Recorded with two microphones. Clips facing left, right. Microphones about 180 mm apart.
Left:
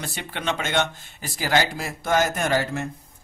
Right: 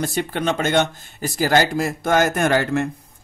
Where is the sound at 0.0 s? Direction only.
45° right (ahead or behind).